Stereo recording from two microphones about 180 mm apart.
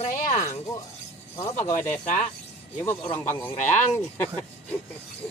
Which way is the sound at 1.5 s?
40° left (ahead or behind).